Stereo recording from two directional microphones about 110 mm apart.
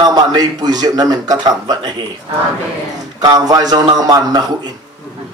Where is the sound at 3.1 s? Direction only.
35° right (ahead or behind).